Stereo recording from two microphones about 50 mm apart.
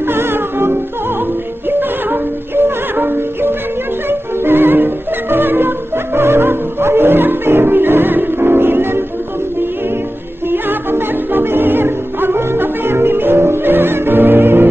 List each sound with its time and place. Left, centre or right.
0.0 s music: right
10.5 s music: right